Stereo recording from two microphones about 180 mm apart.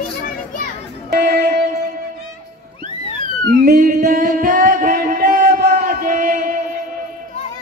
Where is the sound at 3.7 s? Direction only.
50° right (ahead or behind).